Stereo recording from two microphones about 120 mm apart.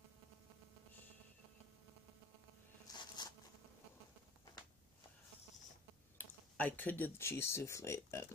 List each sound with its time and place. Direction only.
2.9 s zipper: 35° left (ahead or behind)
6.1 s speech: 15° left (ahead or behind)